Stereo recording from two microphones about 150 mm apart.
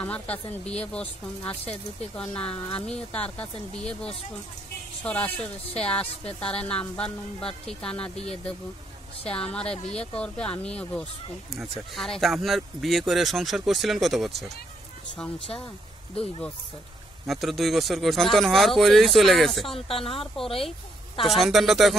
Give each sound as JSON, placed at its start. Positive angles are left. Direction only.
{"t": 0.0, "sound": "a woman's voice", "side_deg": 10}
{"t": 9.3, "sound": "a woman's voice", "side_deg": 5}
{"t": 17.3, "sound": "speech", "side_deg": 0}
{"t": 19.9, "sound": "speech", "side_deg": 40}
{"t": 21.2, "sound": "speech", "side_deg": 0}